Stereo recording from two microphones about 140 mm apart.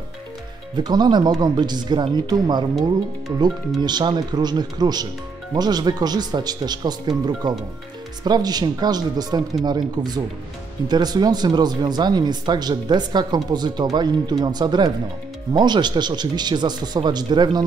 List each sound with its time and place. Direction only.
0.7 s speech: 30° right (ahead or behind)
3.8 s speech: 30° right (ahead or behind)